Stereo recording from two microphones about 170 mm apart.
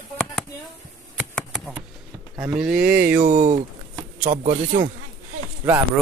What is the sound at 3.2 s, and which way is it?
Speech, 45° right (ahead or behind).